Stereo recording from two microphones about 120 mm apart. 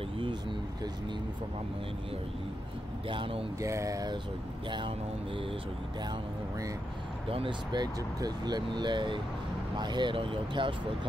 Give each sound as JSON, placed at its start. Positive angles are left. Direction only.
{"t": 3.1, "sound": "speech", "side_deg": -45}
{"t": 3.5, "sound": "a sound", "side_deg": -25}
{"t": 4.6, "sound": "speech", "side_deg": -40}
{"t": 7.2, "sound": "speech", "side_deg": -45}